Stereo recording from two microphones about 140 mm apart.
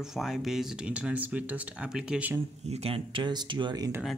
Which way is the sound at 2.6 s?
45° right (ahead or behind).